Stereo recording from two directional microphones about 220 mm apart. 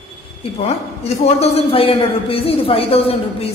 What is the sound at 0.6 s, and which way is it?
A man's voice, 30° left (ahead or behind).